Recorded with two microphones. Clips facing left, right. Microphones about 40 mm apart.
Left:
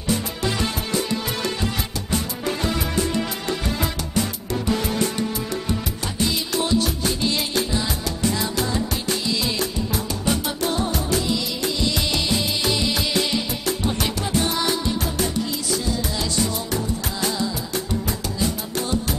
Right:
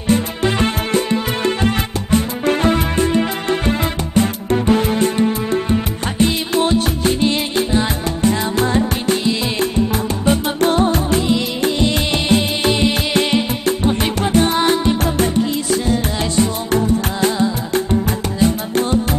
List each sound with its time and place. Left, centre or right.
0.1 s music: right